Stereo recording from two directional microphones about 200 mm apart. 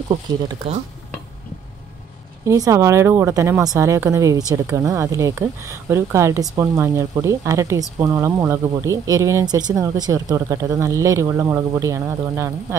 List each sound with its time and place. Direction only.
0.1 s speech: 25° right (ahead or behind)
2.4 s speech: 15° right (ahead or behind)